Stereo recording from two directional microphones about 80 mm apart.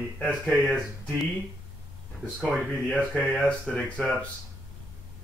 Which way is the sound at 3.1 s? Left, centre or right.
Centre.